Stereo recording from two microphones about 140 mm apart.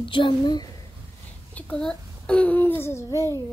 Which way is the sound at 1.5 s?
5° left (ahead or behind).